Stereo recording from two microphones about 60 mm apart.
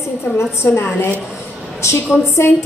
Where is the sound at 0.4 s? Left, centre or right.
Left.